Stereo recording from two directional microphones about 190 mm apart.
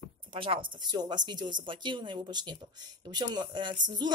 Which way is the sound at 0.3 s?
25° right (ahead or behind).